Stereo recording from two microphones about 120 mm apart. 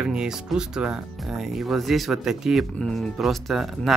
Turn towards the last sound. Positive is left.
turn(degrees=0)  # may be behind; listen again after turning